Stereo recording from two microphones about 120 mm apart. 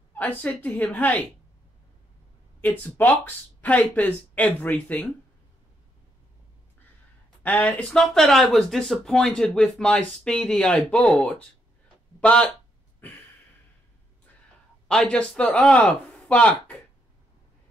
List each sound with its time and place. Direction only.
0.1 s a man's voice: 15° left (ahead or behind)
2.6 s a man's voice: 15° left (ahead or behind)
7.4 s a man's voice: 15° left (ahead or behind)
14.9 s a man's voice: 10° left (ahead or behind)